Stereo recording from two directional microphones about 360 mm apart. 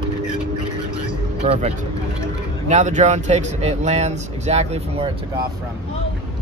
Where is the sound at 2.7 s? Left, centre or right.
Centre.